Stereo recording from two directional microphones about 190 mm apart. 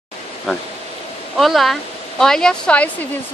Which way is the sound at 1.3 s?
Centre (ahead or behind).